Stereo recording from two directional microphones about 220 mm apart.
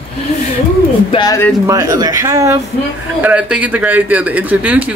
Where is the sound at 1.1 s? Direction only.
15° left (ahead or behind).